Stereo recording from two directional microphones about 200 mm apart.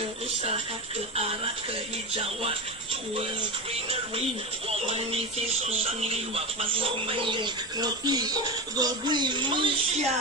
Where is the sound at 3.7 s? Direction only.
30° right (ahead or behind).